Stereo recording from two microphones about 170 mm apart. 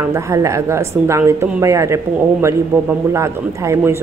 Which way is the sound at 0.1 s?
20° right (ahead or behind).